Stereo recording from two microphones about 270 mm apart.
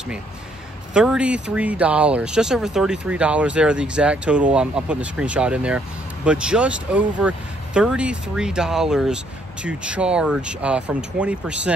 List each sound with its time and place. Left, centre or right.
0.9 s speech: centre